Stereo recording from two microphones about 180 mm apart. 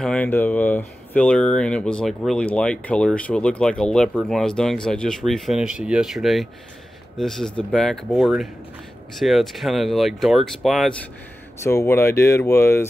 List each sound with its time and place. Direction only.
0.0 s speech: 5° left (ahead or behind)
11.6 s speech: 15° left (ahead or behind)